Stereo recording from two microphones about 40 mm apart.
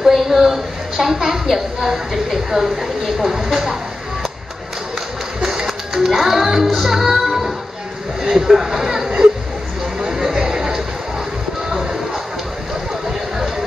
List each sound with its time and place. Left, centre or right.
0.0 s a woman's voice: centre
3.2 s a woman's voice: centre
5.4 s music: centre
8.2 s a woman's voice: centre
9.9 s a sound: centre